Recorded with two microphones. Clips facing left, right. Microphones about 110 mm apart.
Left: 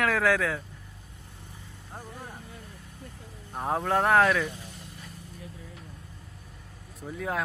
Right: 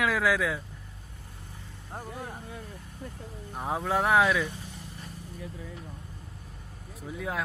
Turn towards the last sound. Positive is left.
turn(degrees=0)  # may be behind; listen again after turning